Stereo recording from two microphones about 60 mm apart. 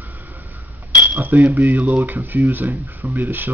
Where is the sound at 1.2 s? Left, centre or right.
Right.